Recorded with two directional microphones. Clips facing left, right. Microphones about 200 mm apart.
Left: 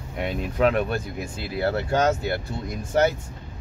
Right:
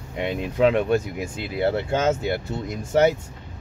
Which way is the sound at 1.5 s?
20° right (ahead or behind).